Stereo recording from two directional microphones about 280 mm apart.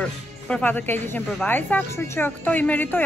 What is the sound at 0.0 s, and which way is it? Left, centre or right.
Speech, centre.